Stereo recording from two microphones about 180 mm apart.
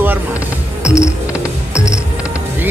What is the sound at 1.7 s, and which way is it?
Music, 15° left (ahead or behind).